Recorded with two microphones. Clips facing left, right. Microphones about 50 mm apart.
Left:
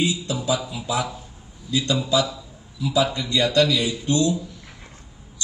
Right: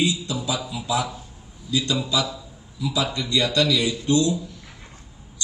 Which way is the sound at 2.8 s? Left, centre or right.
Left.